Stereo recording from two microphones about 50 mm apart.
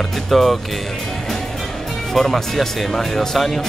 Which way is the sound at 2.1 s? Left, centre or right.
Centre.